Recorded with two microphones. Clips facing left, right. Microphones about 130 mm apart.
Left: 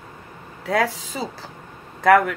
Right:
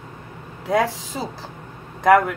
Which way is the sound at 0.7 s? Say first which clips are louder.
Right 1 dB; 15° right (ahead or behind).